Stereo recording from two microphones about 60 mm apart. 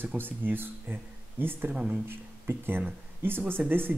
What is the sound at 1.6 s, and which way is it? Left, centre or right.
Speech, right.